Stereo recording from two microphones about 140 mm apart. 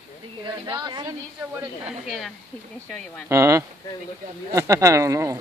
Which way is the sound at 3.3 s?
20° right (ahead or behind).